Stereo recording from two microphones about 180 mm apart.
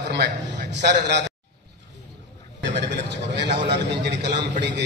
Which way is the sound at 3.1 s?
75° right (ahead or behind).